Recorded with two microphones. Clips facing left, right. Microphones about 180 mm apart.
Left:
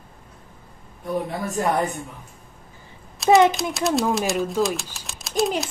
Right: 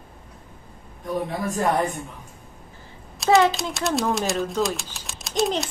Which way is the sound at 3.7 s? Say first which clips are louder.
Left 2 dB; centre (ahead or behind).